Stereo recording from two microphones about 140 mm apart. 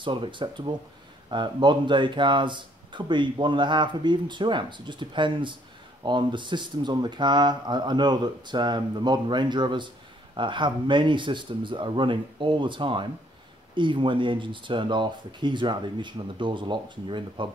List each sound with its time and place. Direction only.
0.0 s speech: 35° right (ahead or behind)